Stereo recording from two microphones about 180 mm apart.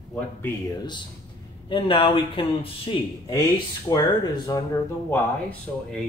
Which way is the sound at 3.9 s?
20° left (ahead or behind).